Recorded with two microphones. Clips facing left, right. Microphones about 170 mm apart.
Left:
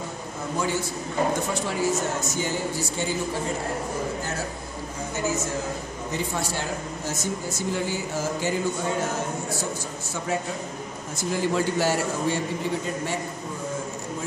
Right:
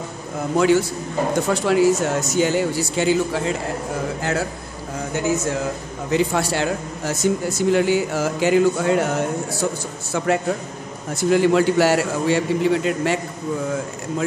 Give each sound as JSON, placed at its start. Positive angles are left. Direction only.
{"t": 0.6, "sound": "speech", "side_deg": -75}
{"t": 4.2, "sound": "speech", "side_deg": -70}
{"t": 6.0, "sound": "speech", "side_deg": -75}